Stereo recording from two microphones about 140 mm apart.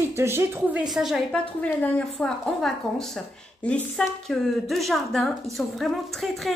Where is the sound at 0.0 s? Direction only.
20° right (ahead or behind).